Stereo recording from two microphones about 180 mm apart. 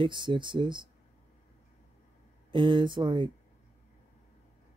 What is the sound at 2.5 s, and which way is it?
Speech, 25° right (ahead or behind).